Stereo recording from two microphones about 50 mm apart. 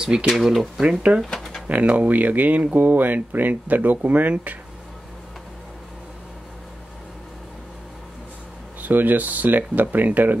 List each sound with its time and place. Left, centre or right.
0.0 s speech: centre
0.3 s speech: centre
1.2 s a sound: centre
1.7 s speech: right
8.8 s speech: right